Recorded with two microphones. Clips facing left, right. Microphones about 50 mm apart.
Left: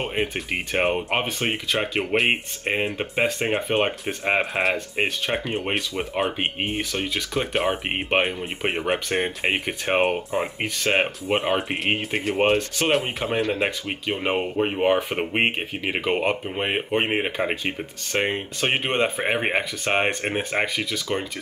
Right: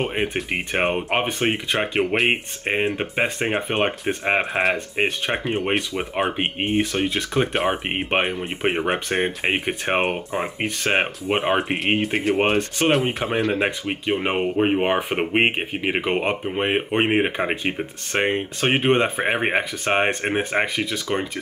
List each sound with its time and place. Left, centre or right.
0.0 s speech: centre
6.8 s speech: centre
7.5 s speech: centre
12.5 s speech: centre
12.9 s speech: centre; by 21.3 s right